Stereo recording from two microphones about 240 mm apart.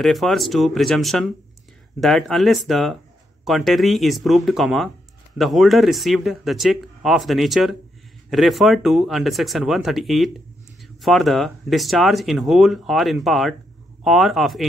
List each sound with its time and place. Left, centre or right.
0.0 s speech: centre